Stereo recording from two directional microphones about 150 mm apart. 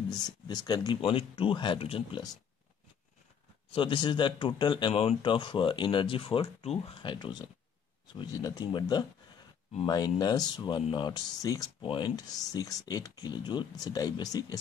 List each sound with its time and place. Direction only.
0.5 s speech: 30° left (ahead or behind)
3.7 s speech: 35° left (ahead or behind)